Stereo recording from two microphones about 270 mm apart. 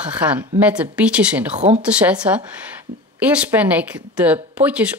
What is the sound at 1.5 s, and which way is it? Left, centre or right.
Speech, right.